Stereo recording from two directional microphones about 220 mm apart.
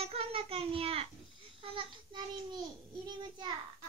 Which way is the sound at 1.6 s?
20° right (ahead or behind).